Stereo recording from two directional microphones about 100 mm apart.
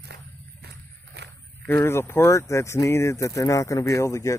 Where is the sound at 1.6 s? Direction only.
25° left (ahead or behind).